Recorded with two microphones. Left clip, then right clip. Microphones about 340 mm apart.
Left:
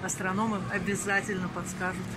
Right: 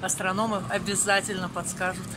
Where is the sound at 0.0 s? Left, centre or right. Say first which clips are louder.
Right 4 dB; centre.